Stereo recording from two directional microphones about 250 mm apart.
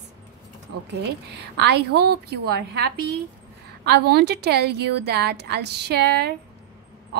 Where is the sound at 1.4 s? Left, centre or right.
Right.